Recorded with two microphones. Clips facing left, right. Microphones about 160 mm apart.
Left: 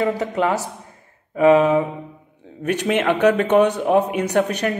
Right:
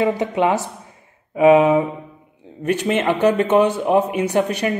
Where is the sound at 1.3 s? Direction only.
20° right (ahead or behind).